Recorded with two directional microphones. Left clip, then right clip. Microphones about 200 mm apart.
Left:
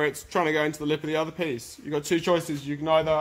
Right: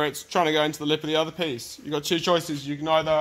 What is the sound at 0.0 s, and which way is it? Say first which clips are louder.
Speech: right 2 dB; 25° right (ahead or behind).